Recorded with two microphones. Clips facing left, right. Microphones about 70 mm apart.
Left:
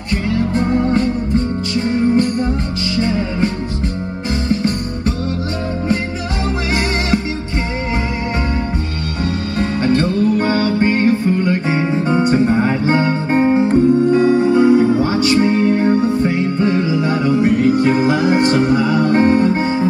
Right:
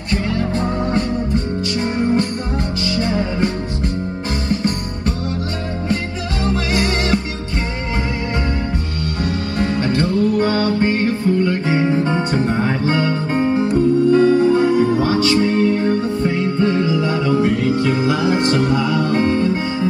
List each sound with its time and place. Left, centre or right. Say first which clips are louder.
0.4 s music: left 4 dB; left
6.4 s music: right 1 dB; left
9.2 s music: left 1 dB; left